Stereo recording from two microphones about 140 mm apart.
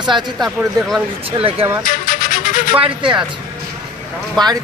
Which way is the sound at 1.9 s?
70° left (ahead or behind).